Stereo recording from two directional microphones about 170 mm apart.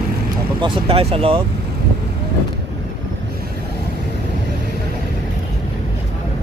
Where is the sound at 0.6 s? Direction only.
30° right (ahead or behind).